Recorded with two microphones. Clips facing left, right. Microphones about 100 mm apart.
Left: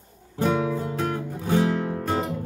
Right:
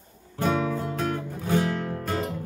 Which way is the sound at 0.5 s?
20° left (ahead or behind).